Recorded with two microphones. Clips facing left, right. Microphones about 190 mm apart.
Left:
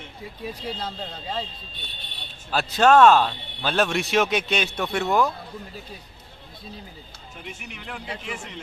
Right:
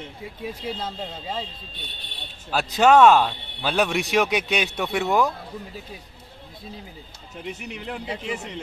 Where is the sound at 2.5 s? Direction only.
15° right (ahead or behind).